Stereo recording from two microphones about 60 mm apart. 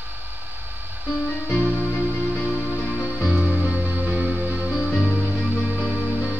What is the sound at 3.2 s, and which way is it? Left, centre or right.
Music, centre.